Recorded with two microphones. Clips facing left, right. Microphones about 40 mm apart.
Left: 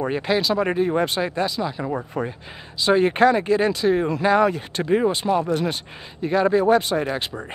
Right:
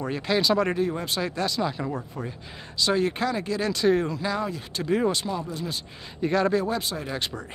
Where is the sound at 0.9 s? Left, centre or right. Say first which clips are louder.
Left 8 dB; left.